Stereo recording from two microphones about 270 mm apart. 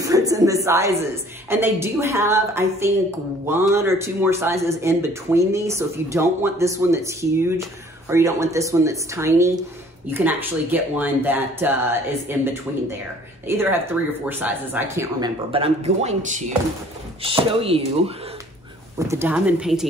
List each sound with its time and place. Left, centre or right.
0.0 s a woman's voice: centre
18.9 s speech: centre